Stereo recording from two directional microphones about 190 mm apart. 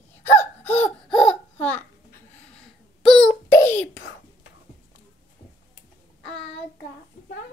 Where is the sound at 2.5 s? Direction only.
5° left (ahead or behind).